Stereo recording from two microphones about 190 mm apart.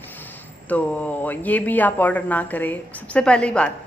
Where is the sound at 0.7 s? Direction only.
10° left (ahead or behind).